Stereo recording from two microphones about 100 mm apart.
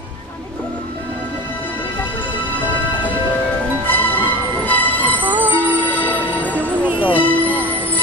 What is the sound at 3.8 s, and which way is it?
Music, 20° left (ahead or behind).